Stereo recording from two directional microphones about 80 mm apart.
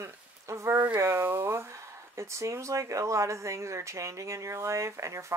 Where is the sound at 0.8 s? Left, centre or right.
Right.